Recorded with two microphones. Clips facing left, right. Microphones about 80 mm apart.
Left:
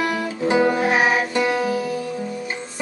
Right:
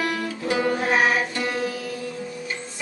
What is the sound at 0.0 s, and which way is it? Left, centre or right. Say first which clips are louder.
Music: left 3 dB; centre.